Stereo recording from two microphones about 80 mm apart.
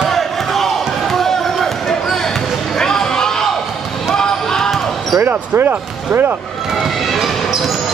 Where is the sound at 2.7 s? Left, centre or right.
Centre.